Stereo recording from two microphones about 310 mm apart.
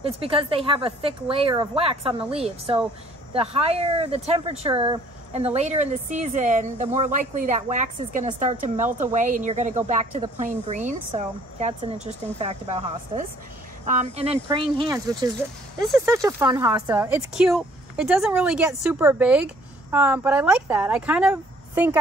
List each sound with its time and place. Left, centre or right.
0.0 s speech: centre
15.8 s speech: centre